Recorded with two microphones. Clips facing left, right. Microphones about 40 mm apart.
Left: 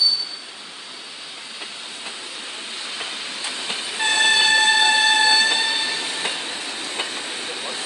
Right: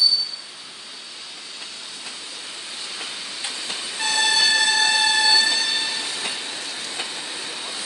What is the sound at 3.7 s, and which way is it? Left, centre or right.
Train, left.